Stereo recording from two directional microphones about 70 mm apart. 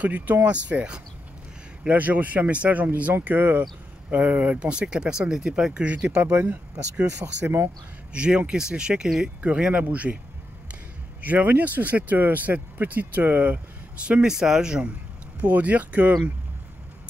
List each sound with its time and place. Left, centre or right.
0.0 s speech: right
6.3 s speech: right
8.1 s speech: centre
11.1 s speech: right
14.0 s speech: centre